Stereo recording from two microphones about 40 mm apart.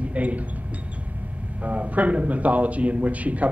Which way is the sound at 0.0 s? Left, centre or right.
Right.